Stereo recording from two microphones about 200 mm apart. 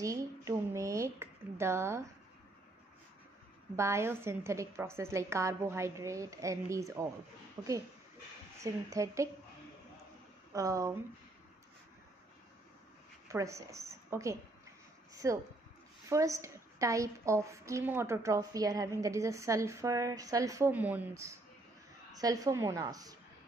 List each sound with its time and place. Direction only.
0.0 s a woman's voice: 15° right (ahead or behind)
3.7 s a woman's voice: 15° right (ahead or behind)
10.5 s a woman's voice: 15° right (ahead or behind)
13.3 s a woman's voice: 15° right (ahead or behind)